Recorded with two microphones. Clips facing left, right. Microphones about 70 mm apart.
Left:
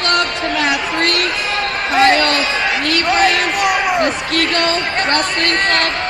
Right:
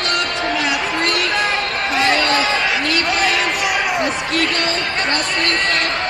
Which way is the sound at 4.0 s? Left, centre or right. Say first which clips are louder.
Left 2 dB; left.